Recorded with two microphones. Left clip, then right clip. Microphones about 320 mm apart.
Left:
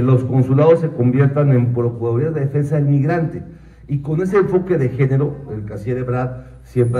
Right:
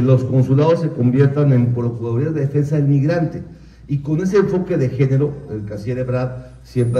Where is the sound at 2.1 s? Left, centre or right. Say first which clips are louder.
Even; centre.